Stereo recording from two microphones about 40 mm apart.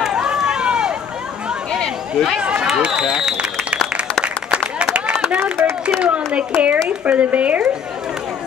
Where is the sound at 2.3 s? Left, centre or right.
Right.